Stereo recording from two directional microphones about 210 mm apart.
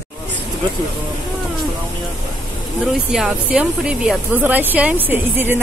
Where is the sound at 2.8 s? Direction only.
Centre (ahead or behind).